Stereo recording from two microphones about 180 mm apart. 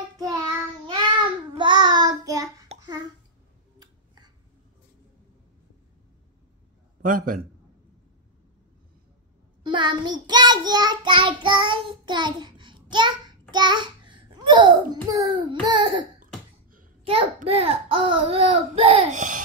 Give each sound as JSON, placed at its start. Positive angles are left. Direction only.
{"t": 0.2, "sound": "child singing", "side_deg": -20}
{"t": 3.8, "sound": "a sound", "side_deg": -20}
{"t": 7.0, "sound": "a man's voice", "side_deg": -50}
{"t": 9.6, "sound": "child singing", "side_deg": -25}
{"t": 15.6, "sound": "a sound", "side_deg": -25}
{"t": 17.0, "sound": "a child's voice", "side_deg": -30}